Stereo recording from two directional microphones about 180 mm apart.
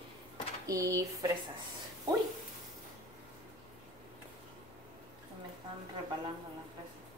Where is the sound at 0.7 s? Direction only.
20° right (ahead or behind).